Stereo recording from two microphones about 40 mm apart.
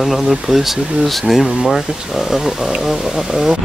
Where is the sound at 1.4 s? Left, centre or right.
Centre.